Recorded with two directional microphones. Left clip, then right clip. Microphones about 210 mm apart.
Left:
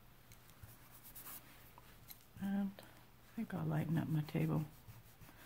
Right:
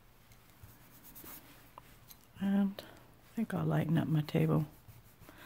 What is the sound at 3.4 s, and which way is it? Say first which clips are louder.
Speech: right 8 dB; 45° right (ahead or behind).